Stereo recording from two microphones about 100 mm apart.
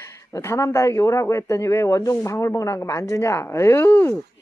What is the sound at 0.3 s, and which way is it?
A woman's voice, 30° left (ahead or behind).